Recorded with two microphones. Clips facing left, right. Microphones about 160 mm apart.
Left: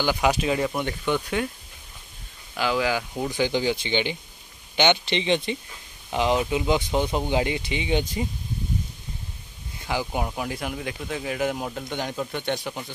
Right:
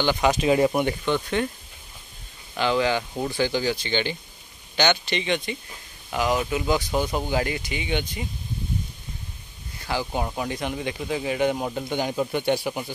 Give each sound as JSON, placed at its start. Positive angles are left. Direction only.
{"t": 0.0, "sound": "speech", "side_deg": 5}
{"t": 2.5, "sound": "speech", "side_deg": 5}
{"t": 3.3, "sound": "speech", "side_deg": 15}
{"t": 8.0, "sound": "speech", "side_deg": 40}
{"t": 9.8, "sound": "speech", "side_deg": 15}